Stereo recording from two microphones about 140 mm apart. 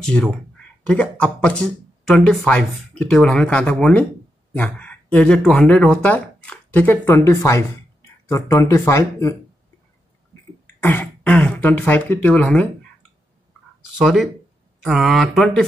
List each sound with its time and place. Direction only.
0.0 s speech: 5° left (ahead or behind); by 9.3 s 20° left (ahead or behind)
10.8 s speech: 15° left (ahead or behind)
13.9 s speech: centre (ahead or behind)